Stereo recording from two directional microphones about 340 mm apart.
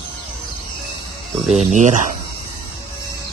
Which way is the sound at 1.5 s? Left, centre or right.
Centre.